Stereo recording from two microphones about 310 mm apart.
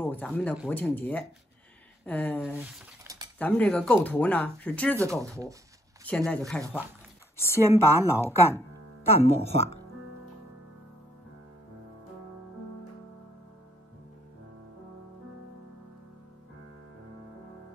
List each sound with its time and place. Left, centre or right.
0.0 s speech: centre
2.5 s a sound: centre
3.3 s speech: centre
5.0 s speech: centre
6.0 s speech: centre
9.2 s speech: centre